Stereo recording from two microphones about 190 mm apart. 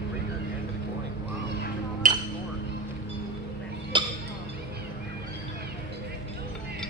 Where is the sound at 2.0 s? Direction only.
45° right (ahead or behind).